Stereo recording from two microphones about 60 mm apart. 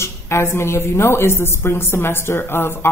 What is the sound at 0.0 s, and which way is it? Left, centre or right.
Speech, left.